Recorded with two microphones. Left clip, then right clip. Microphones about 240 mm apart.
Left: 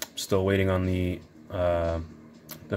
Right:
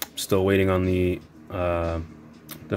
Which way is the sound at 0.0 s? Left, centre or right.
Centre.